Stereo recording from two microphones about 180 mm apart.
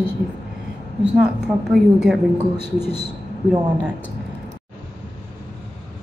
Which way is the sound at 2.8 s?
35° left (ahead or behind).